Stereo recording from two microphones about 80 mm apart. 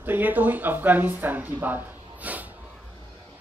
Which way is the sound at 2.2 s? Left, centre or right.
Centre.